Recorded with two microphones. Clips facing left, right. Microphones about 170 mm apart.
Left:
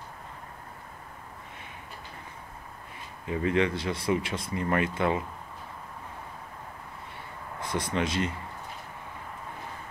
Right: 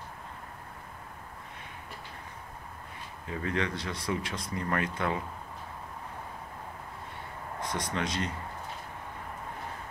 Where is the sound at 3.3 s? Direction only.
10° left (ahead or behind).